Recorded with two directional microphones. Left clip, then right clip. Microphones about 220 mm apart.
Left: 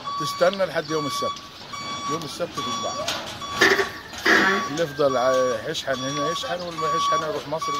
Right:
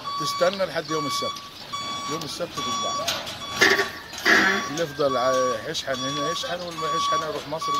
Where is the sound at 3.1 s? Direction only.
40° right (ahead or behind).